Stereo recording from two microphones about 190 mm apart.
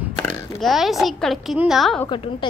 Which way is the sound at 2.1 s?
25° left (ahead or behind).